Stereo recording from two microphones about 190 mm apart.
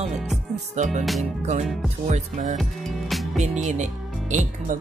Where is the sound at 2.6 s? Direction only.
Centre (ahead or behind).